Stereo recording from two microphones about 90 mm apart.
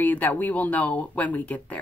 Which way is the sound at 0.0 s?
20° left (ahead or behind).